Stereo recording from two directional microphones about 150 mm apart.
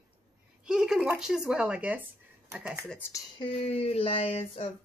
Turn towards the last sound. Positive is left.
turn(degrees=40)  # may be behind; listen again after turning